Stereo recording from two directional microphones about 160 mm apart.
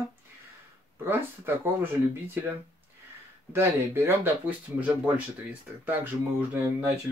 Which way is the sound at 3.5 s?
15° right (ahead or behind).